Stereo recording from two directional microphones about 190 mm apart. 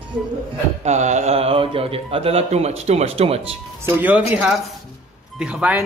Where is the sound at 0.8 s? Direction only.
40° right (ahead or behind).